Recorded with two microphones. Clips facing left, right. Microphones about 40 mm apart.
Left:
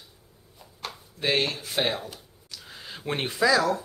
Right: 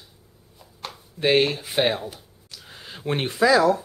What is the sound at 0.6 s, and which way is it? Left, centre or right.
Chopping, centre.